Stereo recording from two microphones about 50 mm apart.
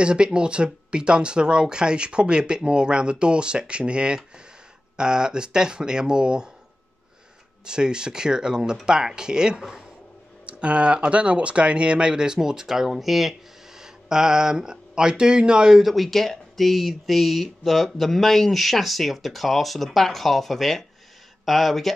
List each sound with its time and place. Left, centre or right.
0.0 s speech: centre
7.6 s speech: centre
10.4 s speech: right
15.8 s speech: centre